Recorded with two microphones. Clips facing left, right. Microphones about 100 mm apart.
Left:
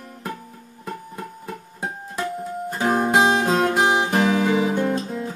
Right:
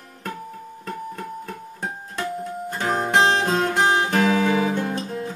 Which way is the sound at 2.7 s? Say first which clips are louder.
Left 2 dB; 5° left (ahead or behind).